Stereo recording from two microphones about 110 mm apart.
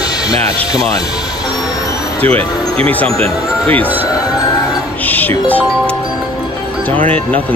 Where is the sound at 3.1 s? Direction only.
60° right (ahead or behind).